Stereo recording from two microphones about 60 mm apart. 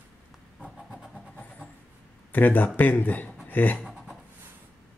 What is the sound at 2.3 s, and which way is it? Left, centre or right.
Speech, left.